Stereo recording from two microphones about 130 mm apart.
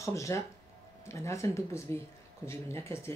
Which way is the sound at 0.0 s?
25° left (ahead or behind).